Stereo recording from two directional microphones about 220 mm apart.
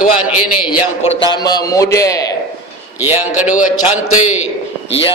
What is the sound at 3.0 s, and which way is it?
Speech, 10° right (ahead or behind).